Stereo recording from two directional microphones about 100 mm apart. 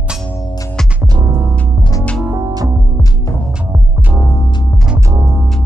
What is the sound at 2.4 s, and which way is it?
Music, 40° right (ahead or behind).